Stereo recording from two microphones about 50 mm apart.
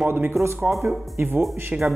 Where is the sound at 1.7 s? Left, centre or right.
Right.